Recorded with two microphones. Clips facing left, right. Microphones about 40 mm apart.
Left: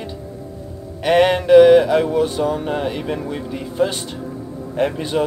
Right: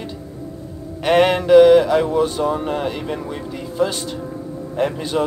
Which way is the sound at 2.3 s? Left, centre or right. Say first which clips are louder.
Even; centre.